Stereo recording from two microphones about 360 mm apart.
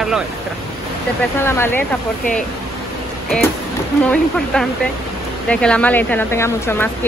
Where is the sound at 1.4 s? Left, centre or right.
Centre.